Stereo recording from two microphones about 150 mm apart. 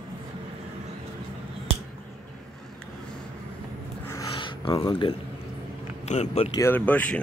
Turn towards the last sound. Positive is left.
turn(degrees=10)  # may be behind; listen again after turning